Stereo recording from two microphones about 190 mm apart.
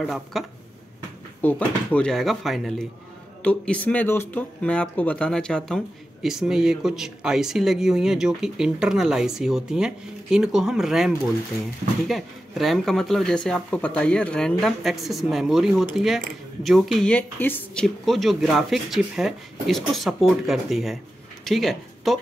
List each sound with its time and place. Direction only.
0.0 s speech: centre (ahead or behind)